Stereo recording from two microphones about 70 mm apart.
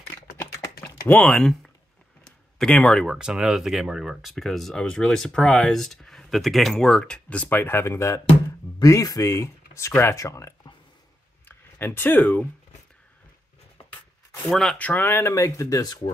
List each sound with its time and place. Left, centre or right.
1.0 s speech: left
1.3 s speech: centre
3.1 s speech: centre
7.4 s speech: left
8.8 s speech: left
11.4 s speech: left
14.5 s speech: centre
14.8 s speech: left
15.3 s speech: left